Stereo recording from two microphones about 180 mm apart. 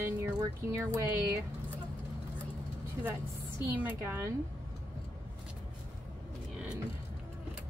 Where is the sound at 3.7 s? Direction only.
10° right (ahead or behind).